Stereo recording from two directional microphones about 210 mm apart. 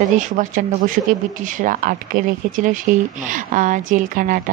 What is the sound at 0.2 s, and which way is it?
A woman's voice, 40° right (ahead or behind).